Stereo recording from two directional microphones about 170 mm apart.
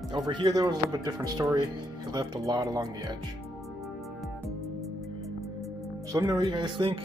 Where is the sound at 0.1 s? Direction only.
25° right (ahead or behind).